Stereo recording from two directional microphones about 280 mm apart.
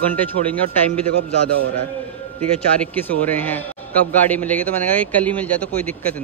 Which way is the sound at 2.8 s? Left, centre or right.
Centre.